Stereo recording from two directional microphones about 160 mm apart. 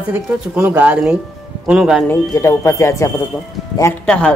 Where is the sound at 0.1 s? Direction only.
10° right (ahead or behind).